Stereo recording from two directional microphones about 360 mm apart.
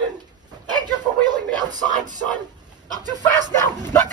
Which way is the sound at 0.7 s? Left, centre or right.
Centre.